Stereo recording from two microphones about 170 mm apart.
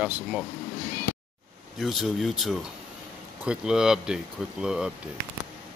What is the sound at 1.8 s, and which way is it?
Speech, centre (ahead or behind).